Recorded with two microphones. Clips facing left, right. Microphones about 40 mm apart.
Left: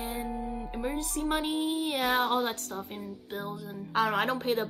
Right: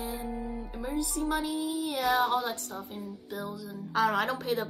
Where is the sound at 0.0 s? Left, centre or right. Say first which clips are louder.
Left 1 dB; left.